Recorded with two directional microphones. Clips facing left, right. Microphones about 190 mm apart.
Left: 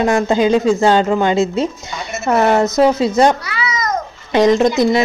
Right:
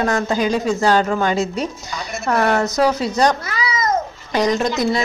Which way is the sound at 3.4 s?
40° right (ahead or behind).